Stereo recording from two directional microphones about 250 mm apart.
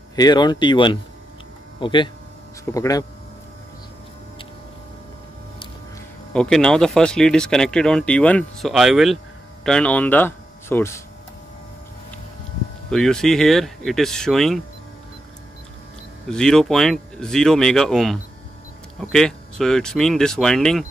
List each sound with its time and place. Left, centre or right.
0.1 s speech: centre
6.3 s speech: centre
12.9 s speech: centre
16.3 s speech: centre